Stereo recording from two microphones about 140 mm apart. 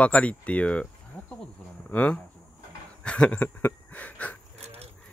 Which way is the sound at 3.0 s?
10° left (ahead or behind).